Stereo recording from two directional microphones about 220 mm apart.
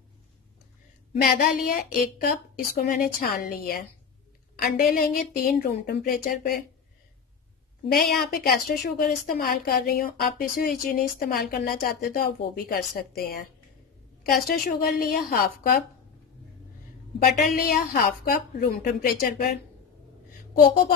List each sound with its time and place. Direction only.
1.2 s a woman's voice: 40° left (ahead or behind)
8.2 s a woman's voice: 45° left (ahead or behind)
14.5 s a woman's voice: 45° left (ahead or behind)
17.2 s a woman's voice: 45° left (ahead or behind)